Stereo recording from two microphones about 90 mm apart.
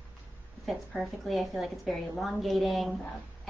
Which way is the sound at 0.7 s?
Centre (ahead or behind).